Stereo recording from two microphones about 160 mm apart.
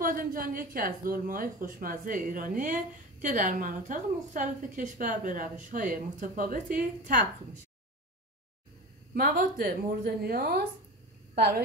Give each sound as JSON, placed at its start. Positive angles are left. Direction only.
{"t": 0.0, "sound": "a woman's voice", "side_deg": -60}
{"t": 9.1, "sound": "a woman's voice", "side_deg": -65}